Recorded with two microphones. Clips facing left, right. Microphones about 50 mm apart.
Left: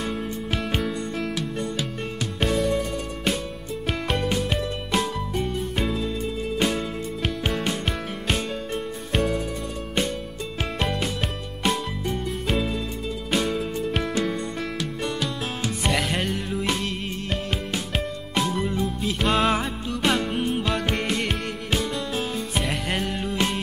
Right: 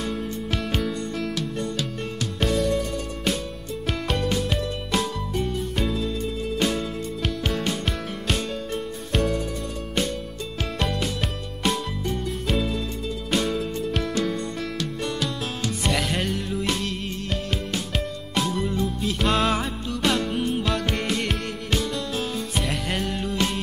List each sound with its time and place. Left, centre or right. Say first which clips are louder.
0.0 s music: even; centre
2.4 s music: even; centre
10.6 s music: left 1 dB; centre
11.0 s music: even; centre
20.3 s music: even; left
20.6 s music: even; centre